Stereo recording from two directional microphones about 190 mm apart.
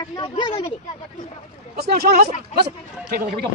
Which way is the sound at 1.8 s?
55° right (ahead or behind).